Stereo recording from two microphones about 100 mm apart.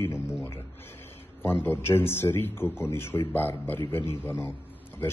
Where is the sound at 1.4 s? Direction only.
20° left (ahead or behind).